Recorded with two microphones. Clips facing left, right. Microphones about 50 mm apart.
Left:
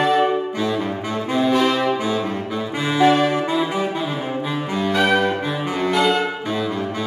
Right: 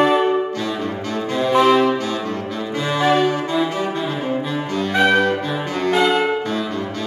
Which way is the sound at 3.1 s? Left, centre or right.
Centre.